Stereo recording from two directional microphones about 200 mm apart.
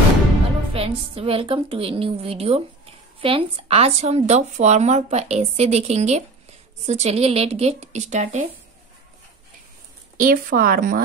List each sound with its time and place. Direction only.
0.7 s a woman's voice: 30° right (ahead or behind)
10.1 s a woman's voice: 45° right (ahead or behind)